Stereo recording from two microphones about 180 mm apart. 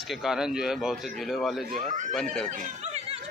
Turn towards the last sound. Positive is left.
turn(degrees=-35)  # may be behind; listen again after turning